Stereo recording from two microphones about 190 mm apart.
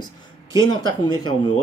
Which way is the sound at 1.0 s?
25° left (ahead or behind).